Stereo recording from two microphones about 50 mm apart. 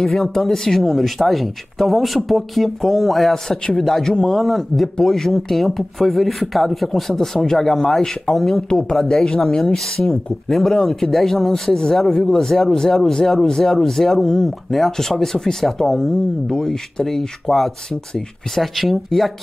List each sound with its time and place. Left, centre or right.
0.0 s speech: centre
8.6 s speech: centre